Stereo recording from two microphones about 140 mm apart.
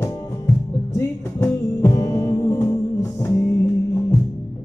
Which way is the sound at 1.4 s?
20° left (ahead or behind).